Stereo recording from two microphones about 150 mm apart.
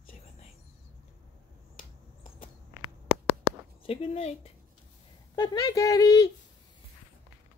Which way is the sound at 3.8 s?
40° left (ahead or behind).